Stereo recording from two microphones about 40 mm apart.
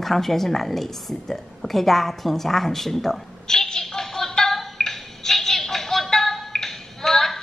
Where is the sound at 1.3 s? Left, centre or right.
Centre.